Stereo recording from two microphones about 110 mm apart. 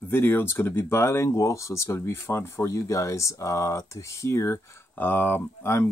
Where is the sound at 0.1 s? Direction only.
20° left (ahead or behind).